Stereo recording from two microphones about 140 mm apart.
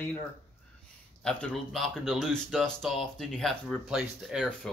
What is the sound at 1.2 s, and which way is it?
Speech, 5° left (ahead or behind).